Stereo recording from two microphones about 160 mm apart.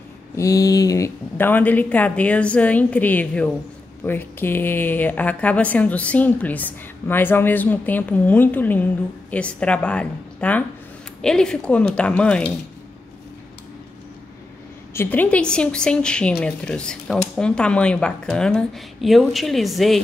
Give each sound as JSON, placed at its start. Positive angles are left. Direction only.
{"t": 0.4, "sound": "speech", "side_deg": 20}
{"t": 15.0, "sound": "a woman's voice", "side_deg": 10}